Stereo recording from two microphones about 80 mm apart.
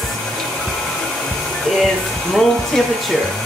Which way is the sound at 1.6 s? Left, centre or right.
Centre.